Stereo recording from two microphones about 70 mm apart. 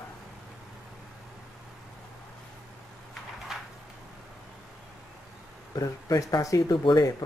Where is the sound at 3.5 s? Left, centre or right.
Centre.